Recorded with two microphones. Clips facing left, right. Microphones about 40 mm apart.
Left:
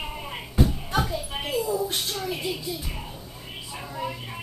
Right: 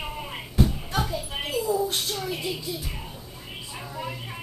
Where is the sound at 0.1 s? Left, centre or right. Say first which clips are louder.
Even; centre.